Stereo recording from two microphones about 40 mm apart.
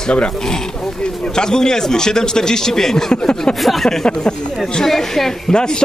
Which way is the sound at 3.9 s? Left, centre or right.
Centre.